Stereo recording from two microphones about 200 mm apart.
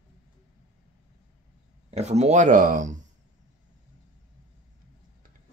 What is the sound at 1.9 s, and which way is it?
Speech, 35° right (ahead or behind).